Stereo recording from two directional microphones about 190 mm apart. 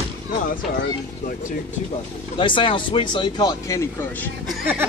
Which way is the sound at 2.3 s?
25° left (ahead or behind).